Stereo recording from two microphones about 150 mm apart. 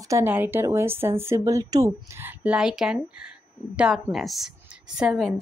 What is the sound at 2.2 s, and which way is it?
A woman's voice, 5° right (ahead or behind).